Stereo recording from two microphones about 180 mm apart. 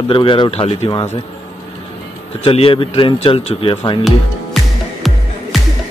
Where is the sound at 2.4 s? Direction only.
30° left (ahead or behind).